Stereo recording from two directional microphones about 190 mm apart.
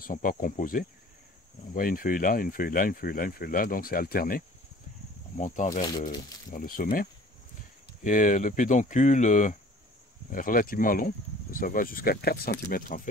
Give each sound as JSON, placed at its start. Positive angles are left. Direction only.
{"t": 0.0, "sound": "speech", "side_deg": 45}
{"t": 5.4, "sound": "speech", "side_deg": 40}